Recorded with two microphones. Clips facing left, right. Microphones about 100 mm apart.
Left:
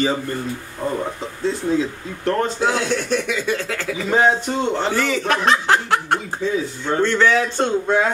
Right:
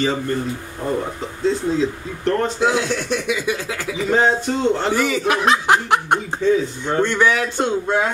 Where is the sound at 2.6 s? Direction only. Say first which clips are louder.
Right 1 dB; 10° right (ahead or behind).